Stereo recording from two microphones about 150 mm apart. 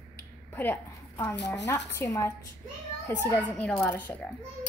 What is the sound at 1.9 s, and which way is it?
A woman's voice, 20° left (ahead or behind).